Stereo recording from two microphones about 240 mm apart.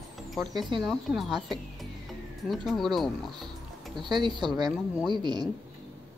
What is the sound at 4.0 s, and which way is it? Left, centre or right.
A man's voice, centre.